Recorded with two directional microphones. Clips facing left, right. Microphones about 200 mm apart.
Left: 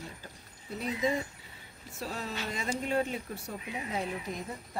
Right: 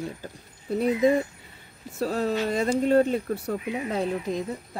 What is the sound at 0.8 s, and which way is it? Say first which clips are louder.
Speech: right 10 dB; 60° right (ahead or behind).